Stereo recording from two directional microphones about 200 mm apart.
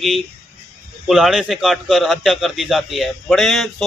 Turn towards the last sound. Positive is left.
turn(degrees=0)  # may be behind; listen again after turning